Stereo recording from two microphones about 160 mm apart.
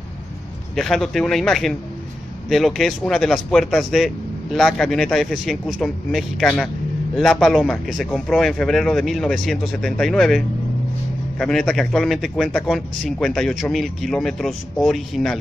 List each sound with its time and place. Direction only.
0.7 s speech: centre (ahead or behind)